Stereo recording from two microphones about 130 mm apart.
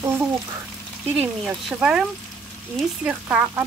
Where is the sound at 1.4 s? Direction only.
5° right (ahead or behind).